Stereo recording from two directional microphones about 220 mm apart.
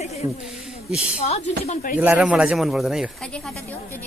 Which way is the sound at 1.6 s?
35° left (ahead or behind).